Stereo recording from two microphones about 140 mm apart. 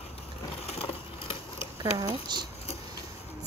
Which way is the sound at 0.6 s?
45° left (ahead or behind).